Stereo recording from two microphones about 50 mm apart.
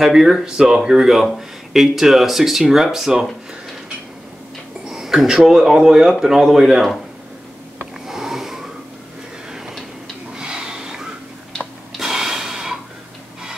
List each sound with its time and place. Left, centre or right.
0.0 s speech: centre
4.8 s speech: centre
8.1 s sniff: centre
9.5 s tick-tock: centre
10.3 s a sound: centre
12.0 s snort: centre